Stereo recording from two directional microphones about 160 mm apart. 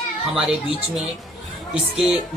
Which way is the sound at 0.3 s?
5° right (ahead or behind).